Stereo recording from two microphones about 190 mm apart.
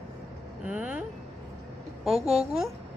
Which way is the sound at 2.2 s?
30° right (ahead or behind).